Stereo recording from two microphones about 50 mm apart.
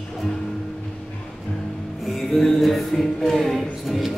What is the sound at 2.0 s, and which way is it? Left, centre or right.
Music, centre.